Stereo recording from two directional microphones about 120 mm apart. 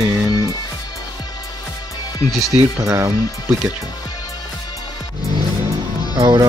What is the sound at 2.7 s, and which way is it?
Speech, 20° right (ahead or behind).